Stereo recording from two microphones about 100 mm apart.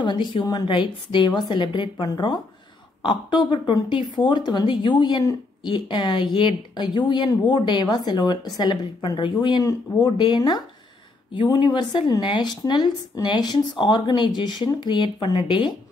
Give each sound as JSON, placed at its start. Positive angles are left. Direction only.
{"t": 0.0, "sound": "speech", "side_deg": 50}